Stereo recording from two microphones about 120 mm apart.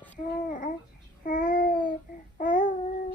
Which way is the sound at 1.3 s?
90° left.